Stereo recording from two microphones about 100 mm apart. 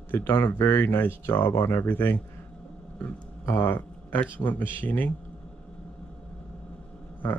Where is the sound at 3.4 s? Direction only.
25° left (ahead or behind).